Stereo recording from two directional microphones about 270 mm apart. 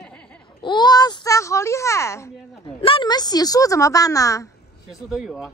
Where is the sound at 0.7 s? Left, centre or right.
Centre.